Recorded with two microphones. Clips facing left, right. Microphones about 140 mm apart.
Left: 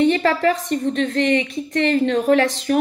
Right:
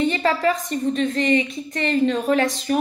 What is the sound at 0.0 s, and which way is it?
A woman's voice, 65° left (ahead or behind).